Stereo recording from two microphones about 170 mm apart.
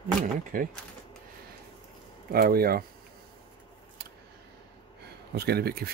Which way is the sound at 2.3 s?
60° right (ahead or behind).